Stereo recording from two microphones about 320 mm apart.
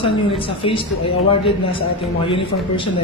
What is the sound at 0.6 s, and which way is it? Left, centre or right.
Speech, centre.